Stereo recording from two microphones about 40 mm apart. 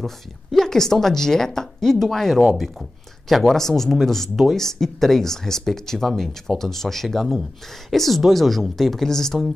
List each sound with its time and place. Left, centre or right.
0.0 s speech: centre